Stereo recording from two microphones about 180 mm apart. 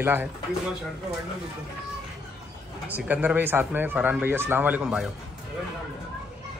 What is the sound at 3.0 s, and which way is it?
A man's voice, 10° right (ahead or behind).